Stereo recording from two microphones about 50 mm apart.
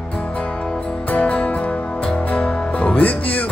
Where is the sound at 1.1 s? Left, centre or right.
Left.